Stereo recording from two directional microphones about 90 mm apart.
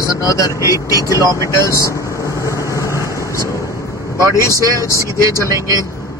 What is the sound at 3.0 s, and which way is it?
Vehicle, 35° right (ahead or behind).